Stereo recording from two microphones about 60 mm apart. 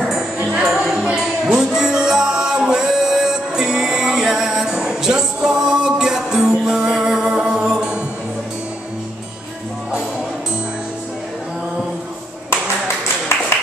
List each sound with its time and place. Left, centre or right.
0.0 s music: centre
12.4 s clapping: left